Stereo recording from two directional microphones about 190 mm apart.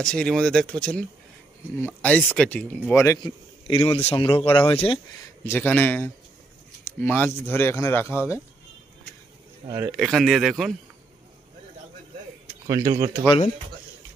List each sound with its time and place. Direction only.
0.0 s speech: 5° left (ahead or behind)
3.6 s speech: 30° left (ahead or behind)
5.4 s speech: 10° left (ahead or behind)
9.8 s speech: 5° right (ahead or behind)
12.6 s speech: 15° right (ahead or behind)